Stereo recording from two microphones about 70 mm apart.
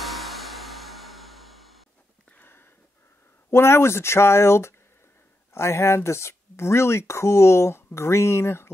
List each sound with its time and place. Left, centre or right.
0.0 s music: centre
2.3 s a sound: left
3.4 s speech: left